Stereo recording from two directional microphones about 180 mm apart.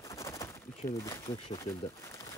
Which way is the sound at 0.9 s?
15° left (ahead or behind).